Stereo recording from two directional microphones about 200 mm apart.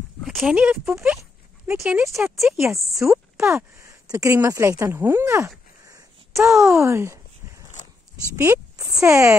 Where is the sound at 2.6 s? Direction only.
15° right (ahead or behind).